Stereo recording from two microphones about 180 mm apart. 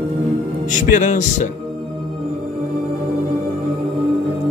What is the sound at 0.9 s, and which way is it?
Speech, 45° left (ahead or behind).